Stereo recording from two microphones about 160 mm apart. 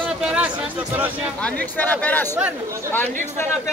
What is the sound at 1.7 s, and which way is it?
Speech, 10° left (ahead or behind).